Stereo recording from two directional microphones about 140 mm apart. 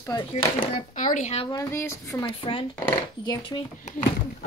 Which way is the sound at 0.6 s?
75° left (ahead or behind).